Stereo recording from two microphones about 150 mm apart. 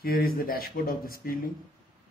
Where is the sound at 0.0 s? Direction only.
80° left.